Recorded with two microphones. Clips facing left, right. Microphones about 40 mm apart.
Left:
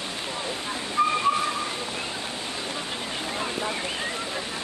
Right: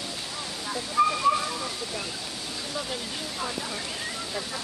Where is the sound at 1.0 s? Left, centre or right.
Left.